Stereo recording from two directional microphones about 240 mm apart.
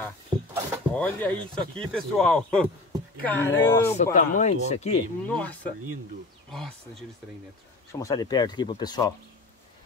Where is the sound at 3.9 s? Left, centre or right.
Left.